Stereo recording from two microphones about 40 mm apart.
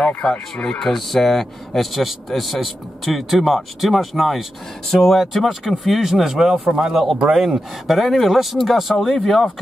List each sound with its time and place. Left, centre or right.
0.0 s speech: left
0.7 s speech: centre
5.2 s speech: centre
7.8 s speech: centre